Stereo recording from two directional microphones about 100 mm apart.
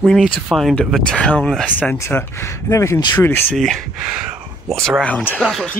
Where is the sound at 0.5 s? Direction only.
5° right (ahead or behind).